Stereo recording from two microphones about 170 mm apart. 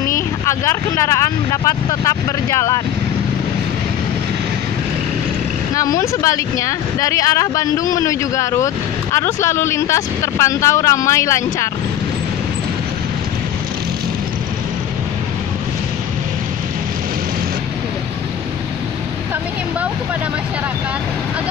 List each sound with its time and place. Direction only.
0.5 s speech: 15° left (ahead or behind)
5.9 s speech: 20° left (ahead or behind)